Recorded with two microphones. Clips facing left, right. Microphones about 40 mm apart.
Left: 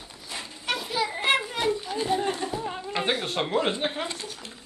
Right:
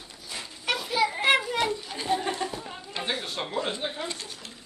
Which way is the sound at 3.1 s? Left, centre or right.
Left.